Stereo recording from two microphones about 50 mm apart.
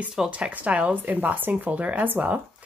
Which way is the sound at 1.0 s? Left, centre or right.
Right.